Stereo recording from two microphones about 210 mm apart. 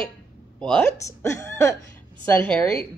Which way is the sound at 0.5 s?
5° left (ahead or behind).